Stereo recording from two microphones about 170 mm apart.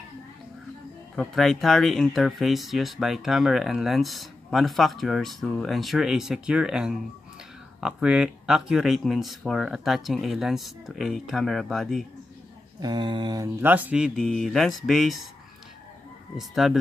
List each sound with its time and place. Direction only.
1.1 s speech: centre (ahead or behind)
12.8 s speech: 25° right (ahead or behind)
13.6 s speech: 10° right (ahead or behind)
16.3 s speech: centre (ahead or behind)